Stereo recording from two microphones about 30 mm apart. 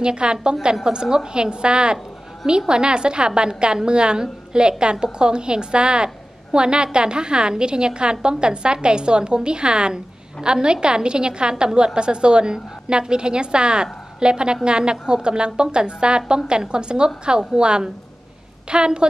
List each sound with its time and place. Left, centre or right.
0.0 s a woman's voice: right